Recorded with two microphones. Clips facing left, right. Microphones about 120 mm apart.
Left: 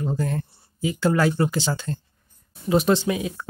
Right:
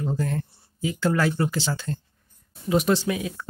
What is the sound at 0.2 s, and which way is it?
Speech, 15° left (ahead or behind).